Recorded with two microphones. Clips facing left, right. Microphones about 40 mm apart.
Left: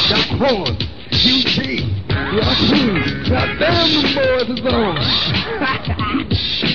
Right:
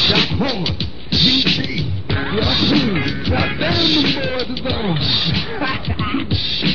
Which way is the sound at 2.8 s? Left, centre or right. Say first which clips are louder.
Left 2 dB; left.